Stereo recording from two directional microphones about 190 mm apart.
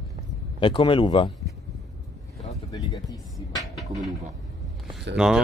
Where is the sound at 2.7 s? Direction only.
20° left (ahead or behind).